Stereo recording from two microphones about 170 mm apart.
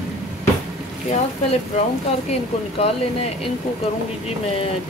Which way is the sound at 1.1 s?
40° left (ahead or behind).